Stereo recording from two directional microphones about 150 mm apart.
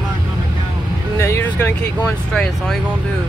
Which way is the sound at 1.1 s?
20° left (ahead or behind).